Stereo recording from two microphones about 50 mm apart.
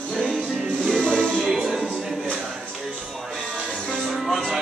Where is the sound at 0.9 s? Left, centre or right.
Left.